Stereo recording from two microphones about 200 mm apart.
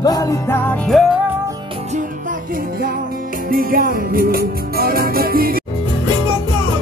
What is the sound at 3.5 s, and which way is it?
Music, 45° right (ahead or behind).